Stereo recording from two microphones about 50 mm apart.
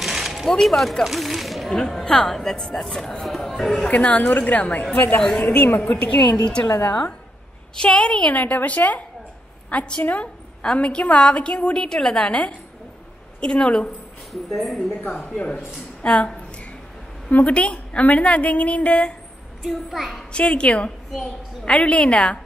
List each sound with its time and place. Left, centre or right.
0.0 s a sound: centre
1.8 s speech: centre
3.9 s a woman's voice: left
7.7 s a woman's voice: centre
8.3 s a woman's voice: left
14.3 s speech: centre
15.1 s a woman's voice: left
17.3 s a woman's voice: left
19.7 s speech: centre
20.3 s a woman's voice: left